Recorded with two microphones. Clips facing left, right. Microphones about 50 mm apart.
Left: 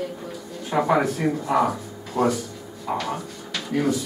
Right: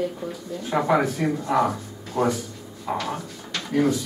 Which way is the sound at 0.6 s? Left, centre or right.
Centre.